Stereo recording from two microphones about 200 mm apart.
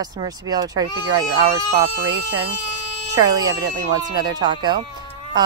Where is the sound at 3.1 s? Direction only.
20° right (ahead or behind).